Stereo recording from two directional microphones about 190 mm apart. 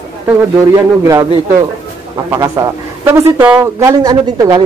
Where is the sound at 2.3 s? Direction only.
15° right (ahead or behind).